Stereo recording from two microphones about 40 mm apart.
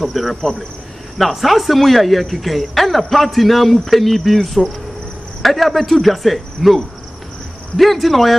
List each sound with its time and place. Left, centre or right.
0.0 s speech: centre